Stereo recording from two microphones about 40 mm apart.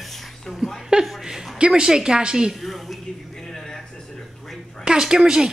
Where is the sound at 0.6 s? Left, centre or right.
Centre.